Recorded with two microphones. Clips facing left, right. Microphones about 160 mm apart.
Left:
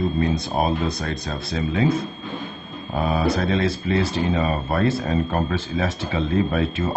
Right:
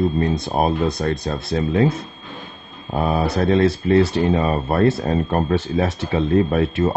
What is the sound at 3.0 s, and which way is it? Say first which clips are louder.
Speech: right 2 dB; 50° right (ahead or behind).